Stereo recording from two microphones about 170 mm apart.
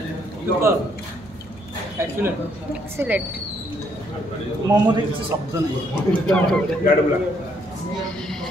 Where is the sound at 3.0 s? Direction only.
10° right (ahead or behind).